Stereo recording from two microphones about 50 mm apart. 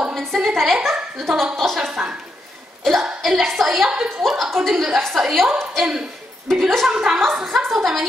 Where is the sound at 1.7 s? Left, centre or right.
Centre.